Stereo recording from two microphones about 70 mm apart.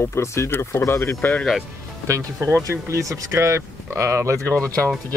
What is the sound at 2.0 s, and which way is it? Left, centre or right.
Speech, right.